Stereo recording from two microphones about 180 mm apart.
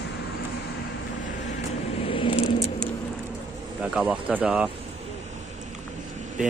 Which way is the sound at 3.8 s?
5° right (ahead or behind).